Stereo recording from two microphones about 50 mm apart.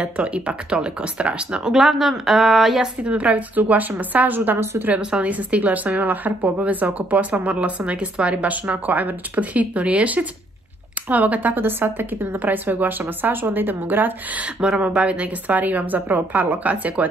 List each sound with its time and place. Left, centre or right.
0.0 s speech: right
1.7 s a woman's voice: centre
3.0 s a woman's voice: right
4.8 s a woman's voice: right
14.9 s a woman's voice: right